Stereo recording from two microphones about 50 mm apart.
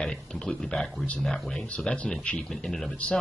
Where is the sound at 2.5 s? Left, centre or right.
Centre.